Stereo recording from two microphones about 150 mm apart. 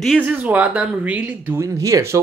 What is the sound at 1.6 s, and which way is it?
Speech, 20° right (ahead or behind).